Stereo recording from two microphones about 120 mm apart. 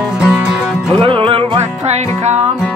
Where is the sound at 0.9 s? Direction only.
45° right (ahead or behind).